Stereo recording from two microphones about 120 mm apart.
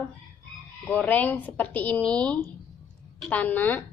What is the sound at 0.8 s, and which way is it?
A woman's voice, 15° left (ahead or behind).